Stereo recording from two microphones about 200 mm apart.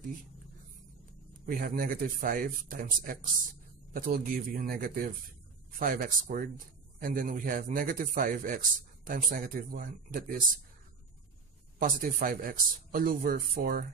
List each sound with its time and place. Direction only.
1.4 s speech: 45° right (ahead or behind)
11.8 s speech: 45° right (ahead or behind)